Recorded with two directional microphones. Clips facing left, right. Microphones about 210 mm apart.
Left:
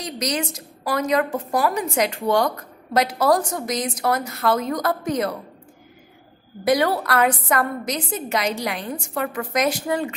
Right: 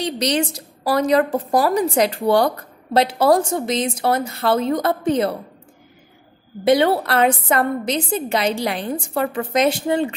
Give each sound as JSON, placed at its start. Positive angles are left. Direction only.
{"t": 0.0, "sound": "a woman's voice", "side_deg": -30}
{"t": 6.6, "sound": "a woman's voice", "side_deg": -25}